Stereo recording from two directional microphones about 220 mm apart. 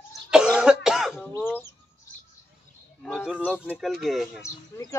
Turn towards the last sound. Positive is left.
turn(degrees=15)  # may be behind; listen again after turning